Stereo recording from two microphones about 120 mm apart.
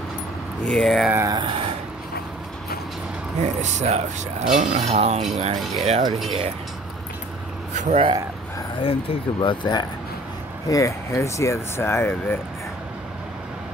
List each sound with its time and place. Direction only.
0.7 s speech: 5° left (ahead or behind)
1.3 s speech: 40° right (ahead or behind)
3.3 s speech: 70° right (ahead or behind)
7.7 s speech: 75° right (ahead or behind)
8.8 s speech: 45° left (ahead or behind)
10.7 s speech: 25° left (ahead or behind)